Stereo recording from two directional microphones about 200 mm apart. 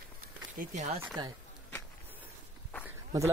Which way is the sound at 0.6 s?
35° right (ahead or behind).